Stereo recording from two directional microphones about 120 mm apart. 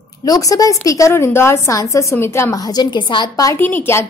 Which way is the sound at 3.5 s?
15° left (ahead or behind).